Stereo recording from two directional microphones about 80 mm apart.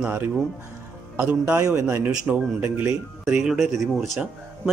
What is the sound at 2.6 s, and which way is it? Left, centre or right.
Speech, right.